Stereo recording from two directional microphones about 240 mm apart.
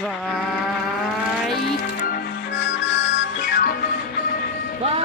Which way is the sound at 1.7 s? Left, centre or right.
Left.